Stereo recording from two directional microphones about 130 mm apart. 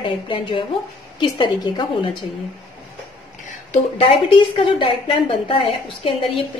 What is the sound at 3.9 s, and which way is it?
A woman's voice, 45° left (ahead or behind).